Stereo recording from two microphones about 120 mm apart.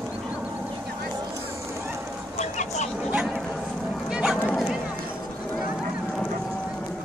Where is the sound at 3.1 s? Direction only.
10° right (ahead or behind).